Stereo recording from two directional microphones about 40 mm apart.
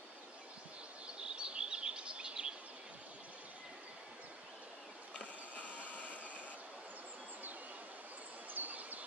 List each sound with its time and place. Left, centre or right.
1.0 s bird vocalization: right
5.1 s vehicle: left
8.5 s a sound: right